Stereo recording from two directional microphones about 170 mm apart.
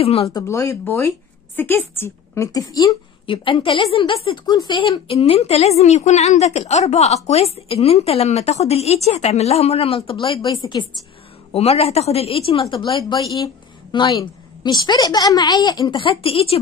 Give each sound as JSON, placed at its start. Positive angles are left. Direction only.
{"t": 0.0, "sound": "a woman's voice", "side_deg": 35}
{"t": 0.3, "sound": "a woman's voice", "side_deg": 20}
{"t": 11.5, "sound": "a woman's voice", "side_deg": 35}